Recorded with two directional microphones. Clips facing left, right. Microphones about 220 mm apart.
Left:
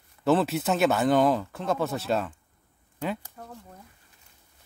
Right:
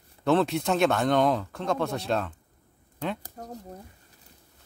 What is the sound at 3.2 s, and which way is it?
Speech, 40° right (ahead or behind).